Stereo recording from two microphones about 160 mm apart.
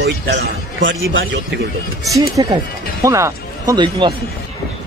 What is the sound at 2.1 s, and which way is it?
Speech, 25° right (ahead or behind).